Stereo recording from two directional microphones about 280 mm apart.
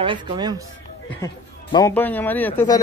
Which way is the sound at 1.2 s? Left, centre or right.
Centre.